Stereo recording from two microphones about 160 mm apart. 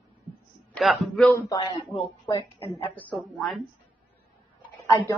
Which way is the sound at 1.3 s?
20° left (ahead or behind).